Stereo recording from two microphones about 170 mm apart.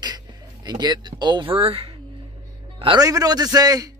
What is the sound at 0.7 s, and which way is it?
A man's voice, 25° right (ahead or behind).